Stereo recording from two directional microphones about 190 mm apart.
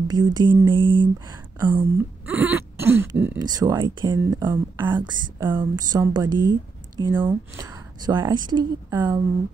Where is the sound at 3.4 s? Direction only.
20° right (ahead or behind).